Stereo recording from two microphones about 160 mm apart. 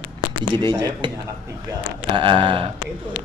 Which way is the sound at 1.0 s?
30° right (ahead or behind).